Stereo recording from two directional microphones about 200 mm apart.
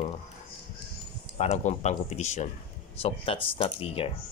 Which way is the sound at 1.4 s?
35° left (ahead or behind).